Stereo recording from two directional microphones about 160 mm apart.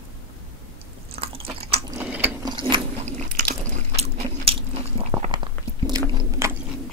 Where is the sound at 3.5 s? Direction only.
40° right (ahead or behind).